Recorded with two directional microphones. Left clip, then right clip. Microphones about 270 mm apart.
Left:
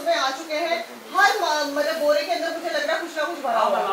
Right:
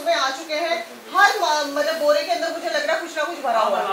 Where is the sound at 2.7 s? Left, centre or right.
Centre.